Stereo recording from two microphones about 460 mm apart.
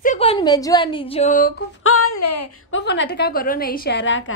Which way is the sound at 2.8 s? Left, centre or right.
Left.